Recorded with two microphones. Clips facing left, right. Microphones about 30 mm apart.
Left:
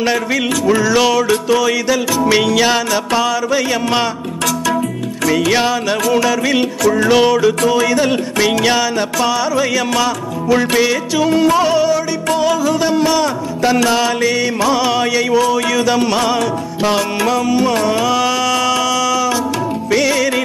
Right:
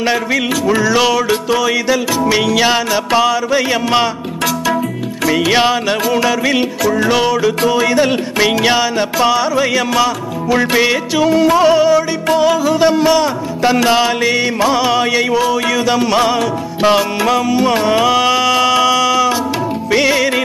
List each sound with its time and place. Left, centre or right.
0.0 s music: centre
5.2 s music: centre
6.9 s music: centre
7.8 s music: centre
14.8 s music: centre